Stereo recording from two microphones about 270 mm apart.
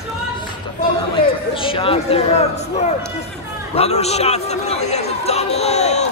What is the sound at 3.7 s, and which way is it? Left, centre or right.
Chatter, left.